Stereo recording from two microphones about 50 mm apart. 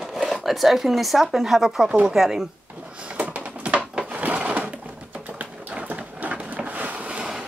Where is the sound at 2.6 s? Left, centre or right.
Right.